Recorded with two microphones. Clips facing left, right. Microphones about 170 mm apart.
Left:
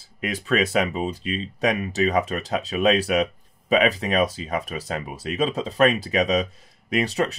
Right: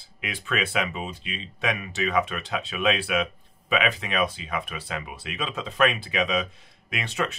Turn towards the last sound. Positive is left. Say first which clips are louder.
# left 7 dB
turn(degrees=40)  # may be behind; listen again after turning